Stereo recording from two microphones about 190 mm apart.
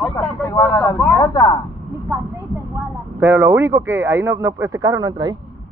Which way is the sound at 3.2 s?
15° right (ahead or behind).